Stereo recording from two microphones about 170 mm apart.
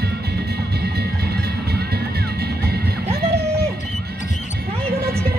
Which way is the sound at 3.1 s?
70° right (ahead or behind).